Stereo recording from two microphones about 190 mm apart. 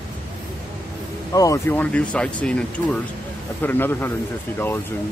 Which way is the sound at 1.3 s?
15° left (ahead or behind).